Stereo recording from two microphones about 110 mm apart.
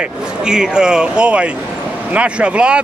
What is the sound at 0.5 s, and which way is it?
Speech, 5° right (ahead or behind).